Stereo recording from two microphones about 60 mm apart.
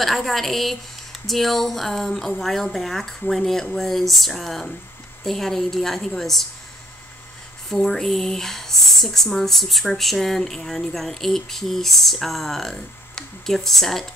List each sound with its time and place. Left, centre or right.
0.0 s speech: centre
7.7 s speech: centre